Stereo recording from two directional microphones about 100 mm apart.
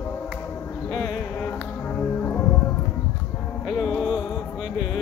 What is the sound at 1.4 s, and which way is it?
Music, 20° left (ahead or behind).